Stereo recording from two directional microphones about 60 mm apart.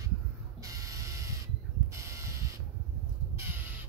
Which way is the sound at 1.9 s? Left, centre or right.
Right.